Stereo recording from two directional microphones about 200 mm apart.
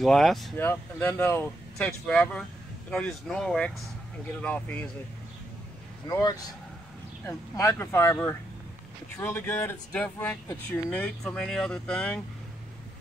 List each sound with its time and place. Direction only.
0.0 s speech: centre (ahead or behind)
6.0 s speech: 20° left (ahead or behind)